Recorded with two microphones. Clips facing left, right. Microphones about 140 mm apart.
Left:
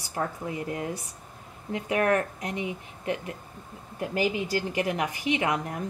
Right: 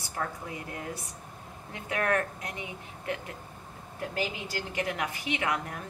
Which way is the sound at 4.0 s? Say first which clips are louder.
Left 6 dB; 20° left (ahead or behind).